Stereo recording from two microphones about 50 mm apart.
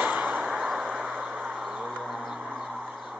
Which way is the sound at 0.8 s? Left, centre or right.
Centre.